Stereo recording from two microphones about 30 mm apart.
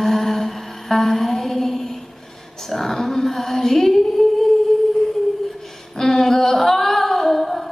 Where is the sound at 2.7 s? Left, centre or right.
Centre.